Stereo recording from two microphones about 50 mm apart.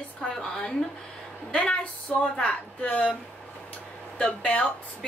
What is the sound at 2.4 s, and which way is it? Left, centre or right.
Speech, left.